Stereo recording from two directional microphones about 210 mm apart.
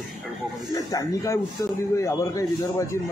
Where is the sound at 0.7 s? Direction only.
15° left (ahead or behind).